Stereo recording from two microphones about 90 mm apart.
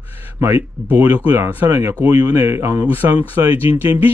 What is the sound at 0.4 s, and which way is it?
Speech, 30° right (ahead or behind).